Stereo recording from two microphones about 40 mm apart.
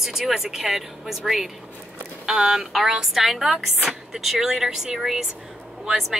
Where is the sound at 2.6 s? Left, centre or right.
Centre.